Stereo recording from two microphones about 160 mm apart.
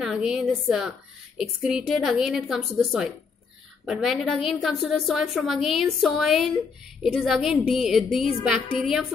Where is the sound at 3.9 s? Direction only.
Centre (ahead or behind).